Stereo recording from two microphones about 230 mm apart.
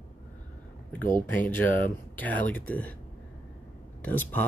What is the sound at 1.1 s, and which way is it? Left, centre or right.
Speech, centre.